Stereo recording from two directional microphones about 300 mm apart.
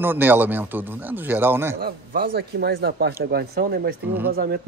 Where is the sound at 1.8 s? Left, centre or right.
Right.